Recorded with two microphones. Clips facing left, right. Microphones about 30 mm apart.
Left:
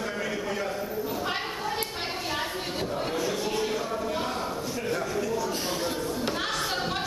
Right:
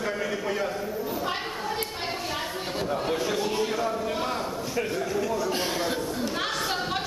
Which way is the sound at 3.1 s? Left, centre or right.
Centre.